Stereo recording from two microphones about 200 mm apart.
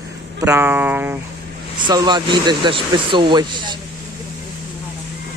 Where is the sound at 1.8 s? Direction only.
20° right (ahead or behind).